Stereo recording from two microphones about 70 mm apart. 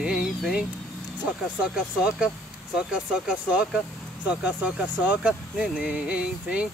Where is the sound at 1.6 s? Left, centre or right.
Centre.